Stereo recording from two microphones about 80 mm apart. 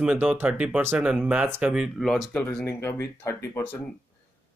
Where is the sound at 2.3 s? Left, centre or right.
Centre.